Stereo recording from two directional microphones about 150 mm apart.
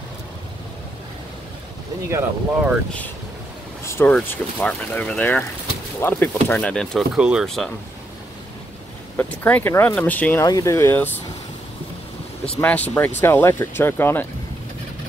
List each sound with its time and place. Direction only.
2.0 s speech: 15° right (ahead or behind)
3.8 s speech: 15° left (ahead or behind)
7.2 s speech: 5° right (ahead or behind)
9.1 s speech: 10° left (ahead or behind)
10.4 s speech: 25° left (ahead or behind)
12.6 s speech: 10° left (ahead or behind)